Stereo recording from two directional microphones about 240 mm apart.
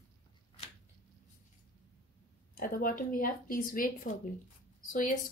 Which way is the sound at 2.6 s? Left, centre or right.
Left.